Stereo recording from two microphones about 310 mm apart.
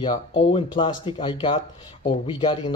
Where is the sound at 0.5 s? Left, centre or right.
Centre.